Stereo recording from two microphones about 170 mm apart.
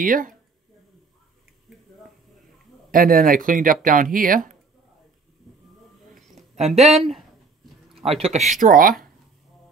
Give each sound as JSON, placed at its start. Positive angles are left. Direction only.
{"t": 0.0, "sound": "speech", "side_deg": -55}
{"t": 2.9, "sound": "speech", "side_deg": -55}
{"t": 6.5, "sound": "speech", "side_deg": -40}
{"t": 6.9, "sound": "speech", "side_deg": 0}
{"t": 8.2, "sound": "speech", "side_deg": -40}